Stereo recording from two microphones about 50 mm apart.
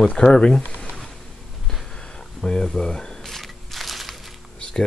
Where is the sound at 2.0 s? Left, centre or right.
Centre.